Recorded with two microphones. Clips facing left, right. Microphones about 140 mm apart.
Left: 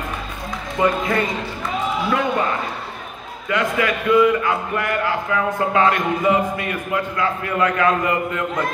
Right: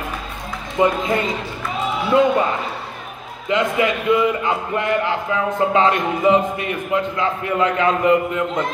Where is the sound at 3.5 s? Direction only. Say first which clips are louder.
Right 2 dB; 20° right (ahead or behind).